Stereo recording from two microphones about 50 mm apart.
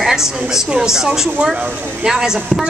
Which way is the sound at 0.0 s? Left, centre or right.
Centre.